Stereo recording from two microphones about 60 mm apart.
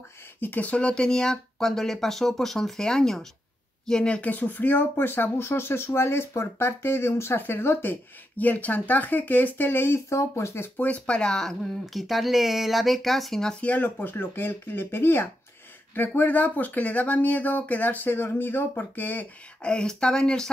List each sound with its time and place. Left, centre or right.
0.4 s speech: left
10.8 s speech: left; by 13.6 s centre
13.6 s speech: left
13.8 s speech: left
19.6 s speech: centre